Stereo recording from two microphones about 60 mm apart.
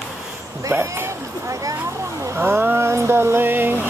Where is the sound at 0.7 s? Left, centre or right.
Right.